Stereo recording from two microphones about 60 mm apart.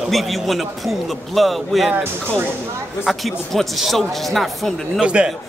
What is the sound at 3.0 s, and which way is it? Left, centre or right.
Speech, centre.